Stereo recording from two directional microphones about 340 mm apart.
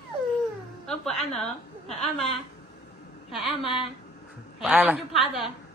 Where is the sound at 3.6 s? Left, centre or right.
Centre.